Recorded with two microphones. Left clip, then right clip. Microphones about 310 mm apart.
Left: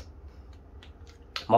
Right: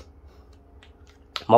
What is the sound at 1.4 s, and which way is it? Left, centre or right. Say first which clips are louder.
Finger snapping: right 4 dB; right.